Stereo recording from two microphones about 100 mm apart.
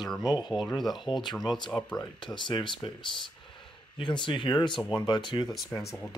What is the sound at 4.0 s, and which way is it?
Speech, 50° left (ahead or behind).